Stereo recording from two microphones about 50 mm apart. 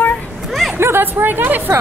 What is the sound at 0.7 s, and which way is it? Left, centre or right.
Speech, right.